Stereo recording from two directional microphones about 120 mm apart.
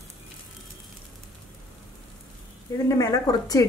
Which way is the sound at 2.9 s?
30° left (ahead or behind).